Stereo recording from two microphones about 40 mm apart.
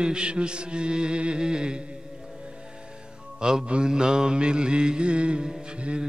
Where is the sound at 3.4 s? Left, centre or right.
Centre.